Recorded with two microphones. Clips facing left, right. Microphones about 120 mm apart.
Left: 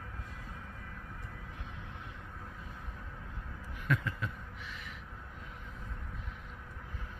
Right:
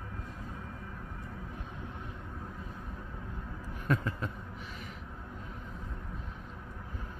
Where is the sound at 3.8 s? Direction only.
35° right (ahead or behind).